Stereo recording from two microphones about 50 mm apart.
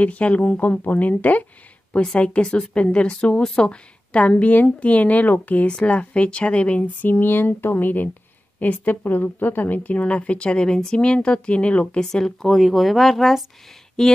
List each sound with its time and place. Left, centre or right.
0.0 s a woman's voice: left
12.0 s speech: centre
14.0 s a sound: centre